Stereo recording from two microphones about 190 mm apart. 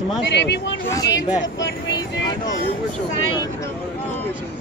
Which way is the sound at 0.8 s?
15° left (ahead or behind).